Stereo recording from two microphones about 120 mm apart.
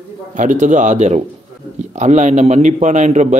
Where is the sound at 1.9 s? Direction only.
80° right.